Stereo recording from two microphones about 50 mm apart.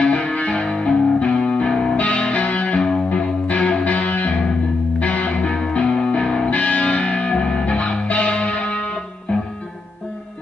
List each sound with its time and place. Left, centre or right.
0.0 s music: left